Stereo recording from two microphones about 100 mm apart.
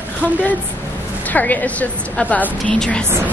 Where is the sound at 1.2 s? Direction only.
15° left (ahead or behind).